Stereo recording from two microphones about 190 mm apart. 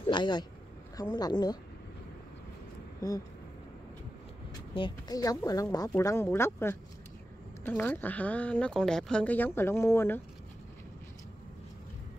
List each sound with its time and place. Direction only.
0.0 s a woman's voice: 25° left (ahead or behind)
4.7 s speech: 25° left (ahead or behind)